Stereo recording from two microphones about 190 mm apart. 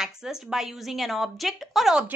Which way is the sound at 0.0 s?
5° right (ahead or behind).